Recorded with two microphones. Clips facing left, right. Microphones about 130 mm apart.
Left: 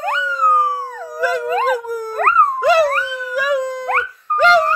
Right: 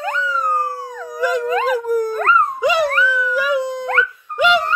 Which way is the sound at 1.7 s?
5° left (ahead or behind).